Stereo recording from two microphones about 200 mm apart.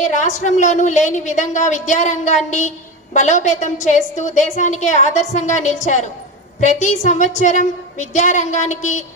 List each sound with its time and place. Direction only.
0.0 s a woman's voice: 35° left (ahead or behind)